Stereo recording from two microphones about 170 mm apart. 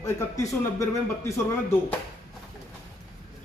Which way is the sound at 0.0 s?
20° left (ahead or behind).